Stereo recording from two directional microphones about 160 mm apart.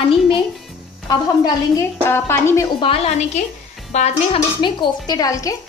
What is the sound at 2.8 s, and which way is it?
Speech, 35° left (ahead or behind).